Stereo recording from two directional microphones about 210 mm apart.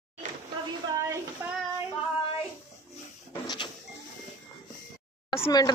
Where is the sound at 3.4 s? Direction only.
20° left (ahead or behind).